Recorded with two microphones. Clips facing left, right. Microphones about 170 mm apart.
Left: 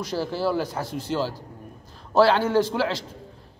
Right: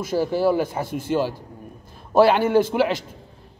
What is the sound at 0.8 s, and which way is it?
Speech, 50° right (ahead or behind).